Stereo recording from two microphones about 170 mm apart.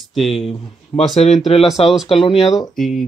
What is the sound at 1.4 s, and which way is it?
Speech, 35° left (ahead or behind).